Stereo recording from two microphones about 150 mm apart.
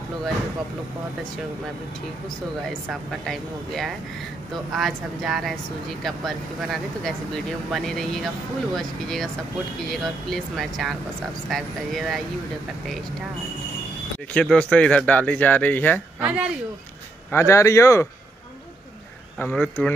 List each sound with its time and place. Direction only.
2.9 s speech: centre (ahead or behind)
14.3 s speech: 5° left (ahead or behind)
16.2 s speech: 10° right (ahead or behind)
17.3 s a man's voice: 20° left (ahead or behind)
19.3 s speech: 5° left (ahead or behind)